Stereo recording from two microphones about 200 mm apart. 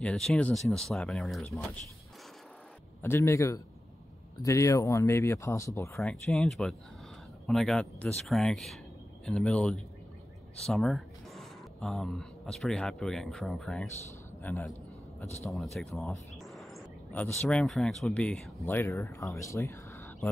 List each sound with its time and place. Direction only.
0.0 s speech: 5° left (ahead or behind)
3.0 s speech: 10° left (ahead or behind)
6.2 s a man's voice: centre (ahead or behind)
15.5 s bird: centre (ahead or behind)
17.4 s speech: 5° left (ahead or behind)
19.3 s a sound: 15° left (ahead or behind)